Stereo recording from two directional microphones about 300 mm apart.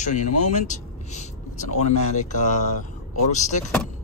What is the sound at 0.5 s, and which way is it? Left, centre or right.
Vehicle, left.